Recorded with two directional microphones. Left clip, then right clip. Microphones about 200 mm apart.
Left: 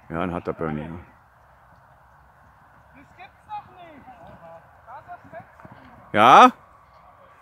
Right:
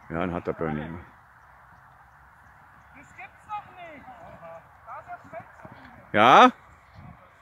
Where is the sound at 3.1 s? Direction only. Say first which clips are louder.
Even; 20° right (ahead or behind).